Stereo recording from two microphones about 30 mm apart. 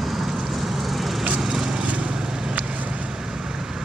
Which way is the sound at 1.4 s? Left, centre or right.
Centre.